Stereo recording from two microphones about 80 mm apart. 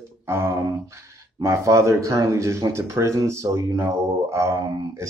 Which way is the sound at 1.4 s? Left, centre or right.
Right.